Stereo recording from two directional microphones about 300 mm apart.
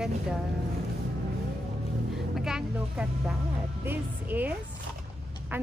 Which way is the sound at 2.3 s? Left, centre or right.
Centre.